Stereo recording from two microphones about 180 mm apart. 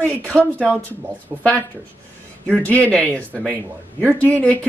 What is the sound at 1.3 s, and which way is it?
Speech, 20° right (ahead or behind).